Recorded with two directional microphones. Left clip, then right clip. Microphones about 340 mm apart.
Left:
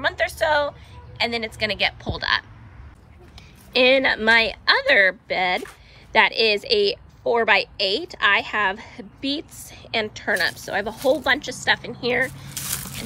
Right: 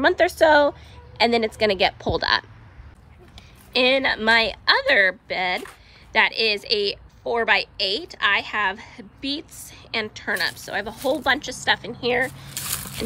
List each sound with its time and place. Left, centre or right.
0.0 s a woman's voice: centre
3.7 s a woman's voice: centre